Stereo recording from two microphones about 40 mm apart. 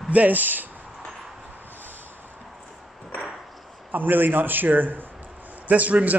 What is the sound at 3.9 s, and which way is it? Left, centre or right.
A man's voice, right.